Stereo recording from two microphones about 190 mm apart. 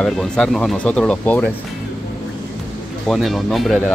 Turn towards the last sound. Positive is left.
turn(degrees=0)  # may be behind; listen again after turning